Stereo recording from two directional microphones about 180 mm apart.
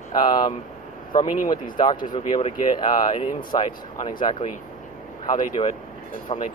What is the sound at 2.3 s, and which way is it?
Speech, 25° left (ahead or behind).